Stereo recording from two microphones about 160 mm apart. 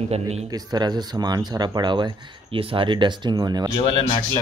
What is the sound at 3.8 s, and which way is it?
Speech, 30° left (ahead or behind).